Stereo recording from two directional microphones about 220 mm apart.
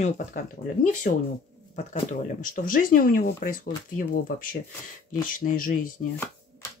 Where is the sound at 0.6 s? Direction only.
40° left (ahead or behind).